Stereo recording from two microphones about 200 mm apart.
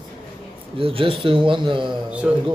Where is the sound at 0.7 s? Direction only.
25° right (ahead or behind).